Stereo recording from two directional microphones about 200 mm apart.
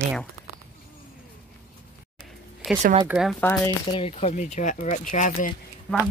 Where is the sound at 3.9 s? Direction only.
30° left (ahead or behind).